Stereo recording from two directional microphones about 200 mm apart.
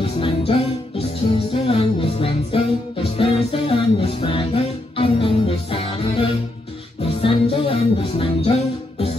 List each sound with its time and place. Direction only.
0.0 s music: 25° left (ahead or behind)